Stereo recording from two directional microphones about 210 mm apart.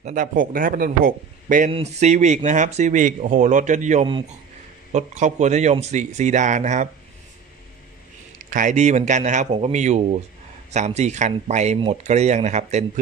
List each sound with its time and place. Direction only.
0.0 s speech: 40° right (ahead or behind)
8.5 s speech: 35° right (ahead or behind)